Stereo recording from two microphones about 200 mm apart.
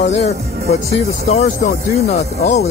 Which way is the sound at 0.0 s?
35° left (ahead or behind).